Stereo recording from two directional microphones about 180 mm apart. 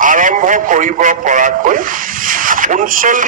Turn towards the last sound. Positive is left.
turn(degrees=-50)  # may be behind; listen again after turning